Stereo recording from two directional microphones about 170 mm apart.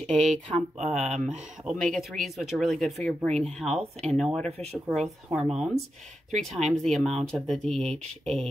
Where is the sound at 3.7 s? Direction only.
40° right (ahead or behind).